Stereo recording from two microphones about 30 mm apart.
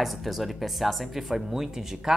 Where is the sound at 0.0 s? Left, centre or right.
Centre.